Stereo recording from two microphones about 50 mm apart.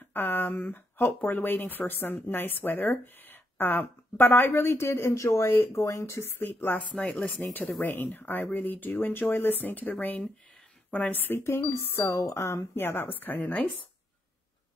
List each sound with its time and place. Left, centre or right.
0.1 s a woman's voice: left
5.8 s speech: left
6.3 s a woman's voice: left
7.0 s speech: left
7.8 s speech: left
11.7 s speech: left
12.7 s speech: left